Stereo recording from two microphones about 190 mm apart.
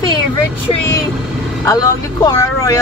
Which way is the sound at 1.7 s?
20° left (ahead or behind).